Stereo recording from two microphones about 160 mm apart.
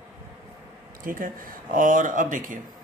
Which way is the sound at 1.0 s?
60° right (ahead or behind).